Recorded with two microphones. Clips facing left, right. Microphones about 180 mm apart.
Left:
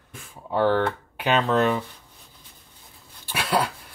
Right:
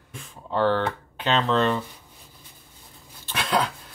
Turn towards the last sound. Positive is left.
turn(degrees=10)  # may be behind; listen again after turning